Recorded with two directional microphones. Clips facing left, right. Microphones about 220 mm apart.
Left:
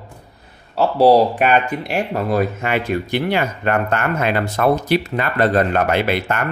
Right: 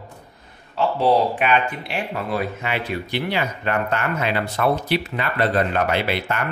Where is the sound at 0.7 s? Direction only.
40° left (ahead or behind).